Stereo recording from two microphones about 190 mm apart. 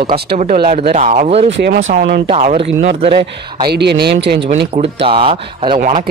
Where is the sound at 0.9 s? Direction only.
35° right (ahead or behind).